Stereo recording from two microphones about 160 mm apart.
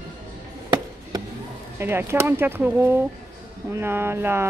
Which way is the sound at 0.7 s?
25° right (ahead or behind).